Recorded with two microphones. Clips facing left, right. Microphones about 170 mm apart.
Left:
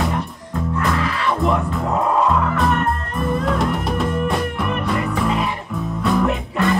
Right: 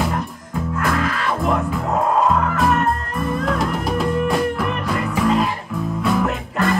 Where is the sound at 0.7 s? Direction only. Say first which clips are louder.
Right 1 dB; 45° right (ahead or behind).